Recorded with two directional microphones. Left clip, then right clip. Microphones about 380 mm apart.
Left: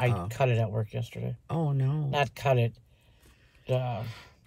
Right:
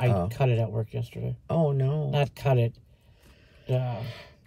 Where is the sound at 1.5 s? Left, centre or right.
Centre.